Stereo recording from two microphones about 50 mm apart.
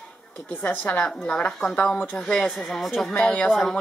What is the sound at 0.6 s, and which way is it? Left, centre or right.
Speech, left.